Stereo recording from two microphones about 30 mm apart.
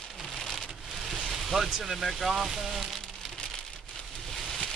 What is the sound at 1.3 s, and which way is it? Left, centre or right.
Speech, centre.